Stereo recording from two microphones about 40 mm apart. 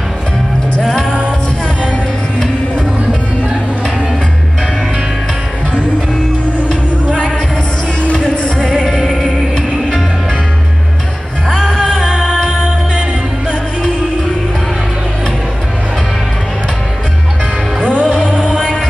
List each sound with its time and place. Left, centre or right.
8.1 s music: left
9.0 s music: centre
9.6 s music: centre
12.1 s music: right
18.0 s music: centre